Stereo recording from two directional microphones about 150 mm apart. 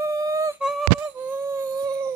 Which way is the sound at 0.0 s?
20° right (ahead or behind).